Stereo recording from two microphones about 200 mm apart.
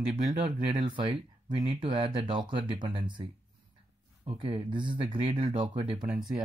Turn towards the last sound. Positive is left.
turn(degrees=0)  # may be behind; listen again after turning